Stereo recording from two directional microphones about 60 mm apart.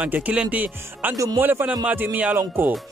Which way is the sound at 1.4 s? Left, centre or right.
Right.